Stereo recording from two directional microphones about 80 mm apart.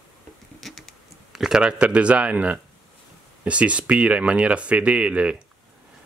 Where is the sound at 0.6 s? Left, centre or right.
Centre.